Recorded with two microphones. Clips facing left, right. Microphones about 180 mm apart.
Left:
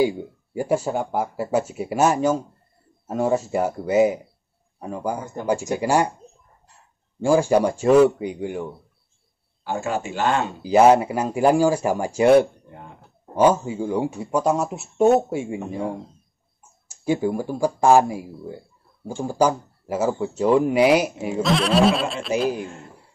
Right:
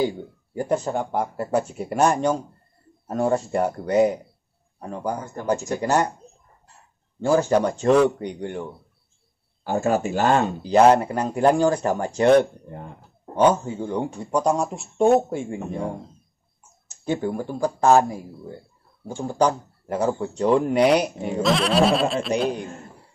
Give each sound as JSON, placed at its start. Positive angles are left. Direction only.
{"t": 0.0, "sound": "speech", "side_deg": 10}
{"t": 7.2, "sound": "speech", "side_deg": 10}
{"t": 9.7, "sound": "speech", "side_deg": -40}
{"t": 10.6, "sound": "speech", "side_deg": 5}
{"t": 16.8, "sound": "speech", "side_deg": 10}